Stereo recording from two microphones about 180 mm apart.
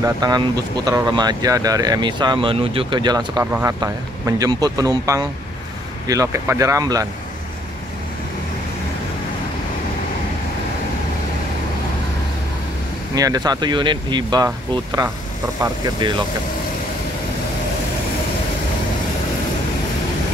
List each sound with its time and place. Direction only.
0.0 s speech: 20° right (ahead or behind)
13.1 s speech: 20° right (ahead or behind)